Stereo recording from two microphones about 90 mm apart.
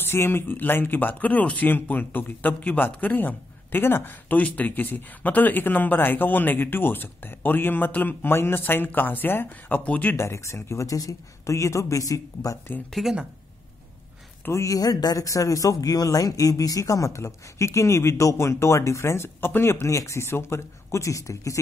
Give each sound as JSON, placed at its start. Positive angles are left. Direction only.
{"t": 0.0, "sound": "speech", "side_deg": 25}
{"t": 10.2, "sound": "a man's voice", "side_deg": 30}
{"t": 12.9, "sound": "speech", "side_deg": -5}
{"t": 14.4, "sound": "a man's voice", "side_deg": 35}